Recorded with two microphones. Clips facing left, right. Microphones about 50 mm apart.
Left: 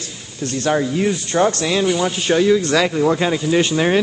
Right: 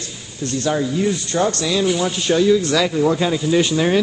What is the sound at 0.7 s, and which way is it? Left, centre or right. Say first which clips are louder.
Speech: left 2 dB; left.